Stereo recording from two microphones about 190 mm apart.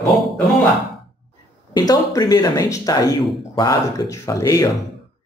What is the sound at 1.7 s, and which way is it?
Speech, 20° left (ahead or behind).